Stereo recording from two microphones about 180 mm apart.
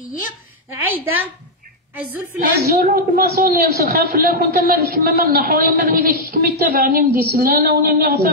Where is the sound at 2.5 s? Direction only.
60° right (ahead or behind).